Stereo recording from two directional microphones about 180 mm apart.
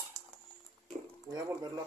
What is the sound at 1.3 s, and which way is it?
Speech, 20° right (ahead or behind).